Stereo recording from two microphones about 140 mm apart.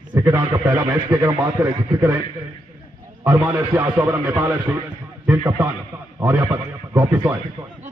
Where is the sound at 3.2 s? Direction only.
10° right (ahead or behind).